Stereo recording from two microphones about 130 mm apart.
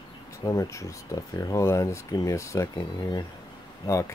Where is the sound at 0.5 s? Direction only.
25° left (ahead or behind).